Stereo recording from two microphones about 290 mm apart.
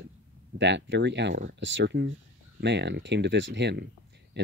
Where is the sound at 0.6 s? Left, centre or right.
Right.